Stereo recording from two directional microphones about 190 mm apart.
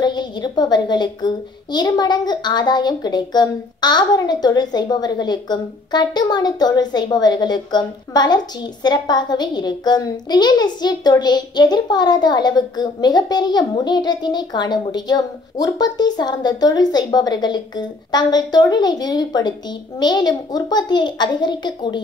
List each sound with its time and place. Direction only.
0.0 s a woman's voice: 20° left (ahead or behind)